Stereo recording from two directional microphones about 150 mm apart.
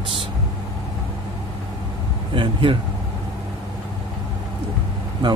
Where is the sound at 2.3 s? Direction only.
35° right (ahead or behind).